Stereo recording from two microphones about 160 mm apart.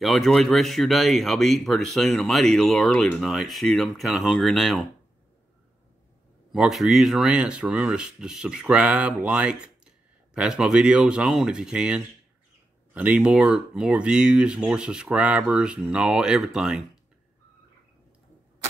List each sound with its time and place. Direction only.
0.0 s speech: centre (ahead or behind)
6.5 s speech: centre (ahead or behind)